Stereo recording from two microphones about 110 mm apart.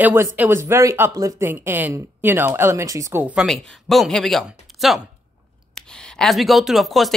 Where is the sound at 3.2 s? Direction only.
15° right (ahead or behind).